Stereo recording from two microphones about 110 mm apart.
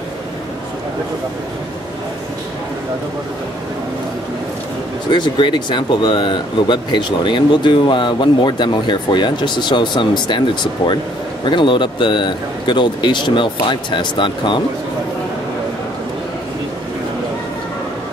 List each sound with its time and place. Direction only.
5.1 s speech: 45° left (ahead or behind)